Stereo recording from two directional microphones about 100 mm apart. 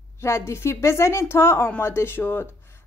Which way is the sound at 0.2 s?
30° left (ahead or behind).